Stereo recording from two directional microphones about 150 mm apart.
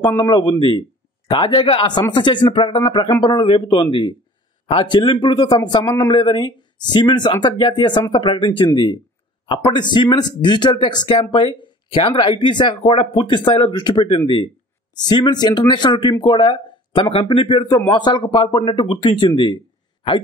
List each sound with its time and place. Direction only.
0.2 s speech: 30° left (ahead or behind)